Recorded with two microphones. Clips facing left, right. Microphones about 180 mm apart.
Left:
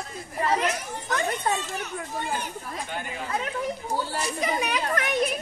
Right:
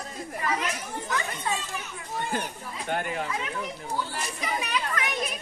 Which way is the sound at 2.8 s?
55° right (ahead or behind).